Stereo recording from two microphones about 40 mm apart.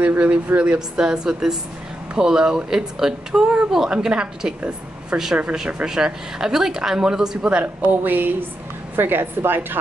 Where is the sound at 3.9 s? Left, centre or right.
Right.